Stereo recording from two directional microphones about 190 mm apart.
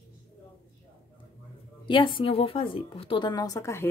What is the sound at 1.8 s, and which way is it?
Speech, 25° left (ahead or behind).